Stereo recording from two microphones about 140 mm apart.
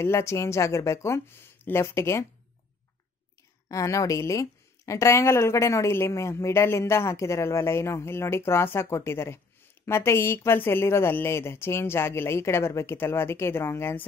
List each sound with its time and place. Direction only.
0.0 s a woman's voice: 20° left (ahead or behind)
3.6 s a woman's voice: 25° left (ahead or behind)